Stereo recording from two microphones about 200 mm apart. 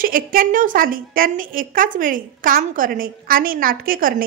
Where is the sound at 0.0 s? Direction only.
45° right (ahead or behind).